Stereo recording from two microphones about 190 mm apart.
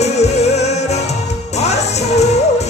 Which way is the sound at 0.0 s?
35° left (ahead or behind).